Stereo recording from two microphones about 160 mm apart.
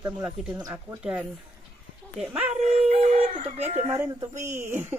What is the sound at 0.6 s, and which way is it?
Speech, 20° right (ahead or behind).